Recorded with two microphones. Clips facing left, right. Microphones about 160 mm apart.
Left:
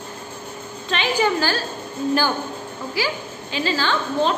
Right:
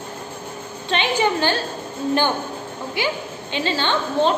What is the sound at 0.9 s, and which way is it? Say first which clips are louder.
Speech: even; 25° right (ahead or behind).